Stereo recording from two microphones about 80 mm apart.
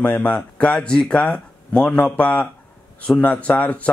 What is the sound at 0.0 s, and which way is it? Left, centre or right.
Speech, centre.